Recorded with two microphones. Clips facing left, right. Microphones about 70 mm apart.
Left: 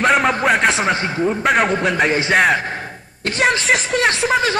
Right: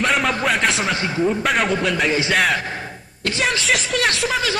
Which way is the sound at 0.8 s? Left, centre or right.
Left.